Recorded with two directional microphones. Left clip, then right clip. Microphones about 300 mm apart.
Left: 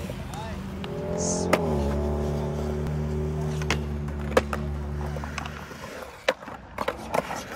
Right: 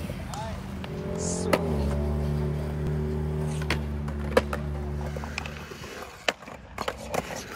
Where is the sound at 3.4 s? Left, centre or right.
Centre.